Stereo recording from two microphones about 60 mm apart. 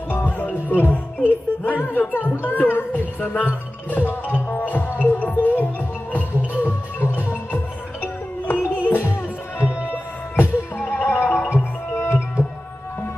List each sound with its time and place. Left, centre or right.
0.1 s music: left
1.6 s speech: left
2.4 s music: left
10.9 s music: left
12.4 s music: right